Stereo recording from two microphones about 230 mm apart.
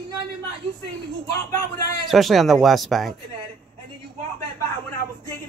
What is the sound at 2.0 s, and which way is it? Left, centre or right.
Speech, centre.